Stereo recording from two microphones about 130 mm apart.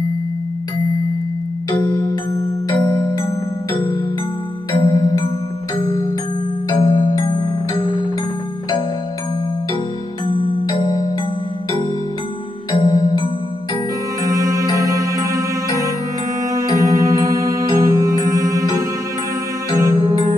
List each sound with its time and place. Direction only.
1.7 s music: 25° left (ahead or behind)
4.7 s music: 35° left (ahead or behind)
10.2 s music: 35° left (ahead or behind)
12.8 s music: 30° left (ahead or behind)
14.2 s music: 25° right (ahead or behind)
19.8 s music: 25° right (ahead or behind)